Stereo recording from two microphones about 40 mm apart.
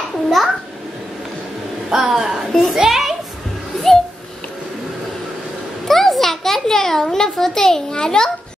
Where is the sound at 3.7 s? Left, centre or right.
Centre.